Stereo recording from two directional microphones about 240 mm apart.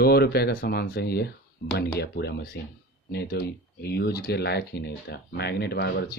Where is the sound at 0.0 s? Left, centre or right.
Left.